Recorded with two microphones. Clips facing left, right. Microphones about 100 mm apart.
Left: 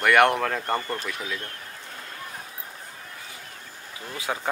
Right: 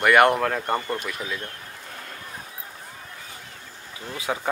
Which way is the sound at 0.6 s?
20° right (ahead or behind).